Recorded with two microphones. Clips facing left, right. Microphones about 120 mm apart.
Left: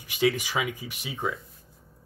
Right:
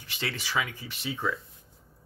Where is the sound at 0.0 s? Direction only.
15° left (ahead or behind).